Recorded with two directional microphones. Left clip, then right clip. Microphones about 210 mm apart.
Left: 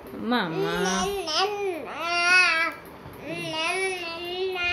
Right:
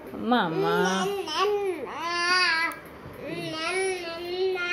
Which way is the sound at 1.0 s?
15° left (ahead or behind).